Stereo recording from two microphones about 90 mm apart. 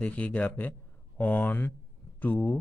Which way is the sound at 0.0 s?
15° left (ahead or behind).